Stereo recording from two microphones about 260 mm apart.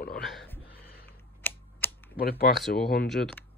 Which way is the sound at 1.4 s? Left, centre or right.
Centre.